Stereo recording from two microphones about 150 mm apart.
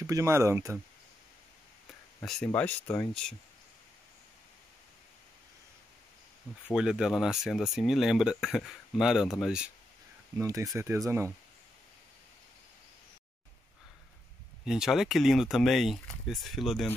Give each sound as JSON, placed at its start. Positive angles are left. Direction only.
{"t": 0.0, "sound": "speech", "side_deg": -20}
{"t": 2.2, "sound": "speech", "side_deg": 5}
{"t": 6.7, "sound": "speech", "side_deg": -5}
{"t": 10.3, "sound": "speech", "side_deg": -20}
{"t": 14.6, "sound": "speech", "side_deg": -5}